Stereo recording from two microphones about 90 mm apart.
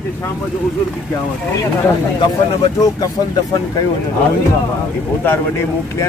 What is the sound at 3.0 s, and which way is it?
Speech, 45° left (ahead or behind).